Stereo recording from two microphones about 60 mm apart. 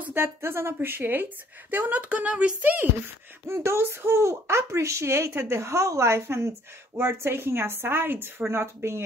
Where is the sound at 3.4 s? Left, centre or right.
Right.